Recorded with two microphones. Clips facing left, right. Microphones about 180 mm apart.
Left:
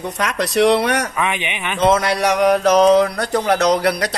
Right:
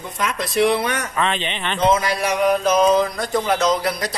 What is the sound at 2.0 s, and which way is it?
Speech, 70° left (ahead or behind).